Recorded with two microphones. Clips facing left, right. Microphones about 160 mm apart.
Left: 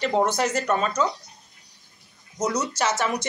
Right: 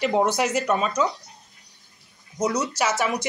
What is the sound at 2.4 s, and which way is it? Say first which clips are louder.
Speech: right 1 dB; centre (ahead or behind).